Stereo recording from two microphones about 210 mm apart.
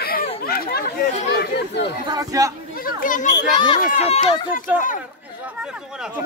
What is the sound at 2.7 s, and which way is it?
Children playing, 40° left (ahead or behind).